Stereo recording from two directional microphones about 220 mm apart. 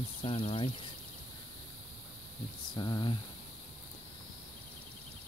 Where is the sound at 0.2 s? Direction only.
25° left (ahead or behind).